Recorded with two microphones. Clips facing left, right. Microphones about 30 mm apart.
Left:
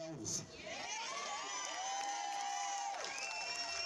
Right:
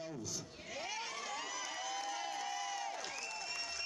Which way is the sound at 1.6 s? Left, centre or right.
Centre.